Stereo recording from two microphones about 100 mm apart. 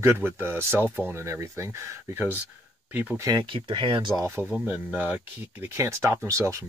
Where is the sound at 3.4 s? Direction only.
60° right (ahead or behind).